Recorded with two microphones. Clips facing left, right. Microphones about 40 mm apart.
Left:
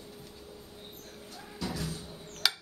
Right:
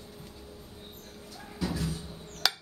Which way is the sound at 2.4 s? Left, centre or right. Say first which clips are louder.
Right 1 dB; centre.